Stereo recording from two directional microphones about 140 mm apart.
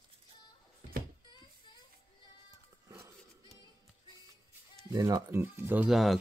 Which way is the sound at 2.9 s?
20° right (ahead or behind).